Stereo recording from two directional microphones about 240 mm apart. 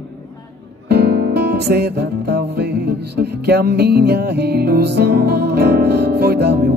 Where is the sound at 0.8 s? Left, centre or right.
Right.